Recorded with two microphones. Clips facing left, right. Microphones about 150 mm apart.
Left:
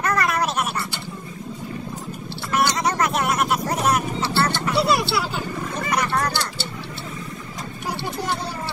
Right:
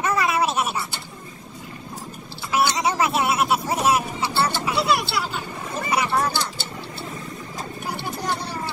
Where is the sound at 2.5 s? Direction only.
5° right (ahead or behind).